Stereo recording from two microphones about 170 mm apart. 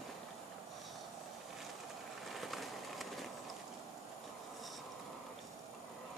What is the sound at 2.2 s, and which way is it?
Skateboard, centre (ahead or behind).